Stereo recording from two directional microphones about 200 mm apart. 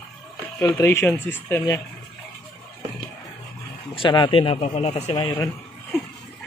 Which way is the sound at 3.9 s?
25° left (ahead or behind).